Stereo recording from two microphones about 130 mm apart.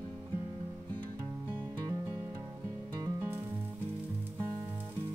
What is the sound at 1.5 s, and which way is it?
Music, 15° right (ahead or behind).